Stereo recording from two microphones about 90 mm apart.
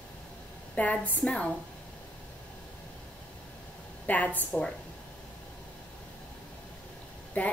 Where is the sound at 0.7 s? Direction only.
15° left (ahead or behind).